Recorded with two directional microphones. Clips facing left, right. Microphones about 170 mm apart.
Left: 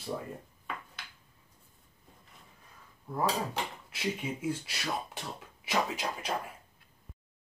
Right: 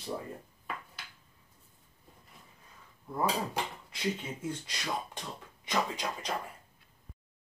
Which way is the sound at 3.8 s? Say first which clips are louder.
Even; 10° left (ahead or behind).